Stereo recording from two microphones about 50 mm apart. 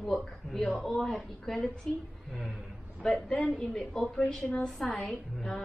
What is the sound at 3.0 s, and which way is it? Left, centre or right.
A woman's voice, centre.